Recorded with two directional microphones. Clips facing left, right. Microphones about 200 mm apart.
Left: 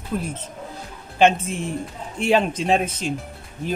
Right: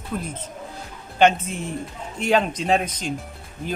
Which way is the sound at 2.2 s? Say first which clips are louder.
Left 1 dB; 5° left (ahead or behind).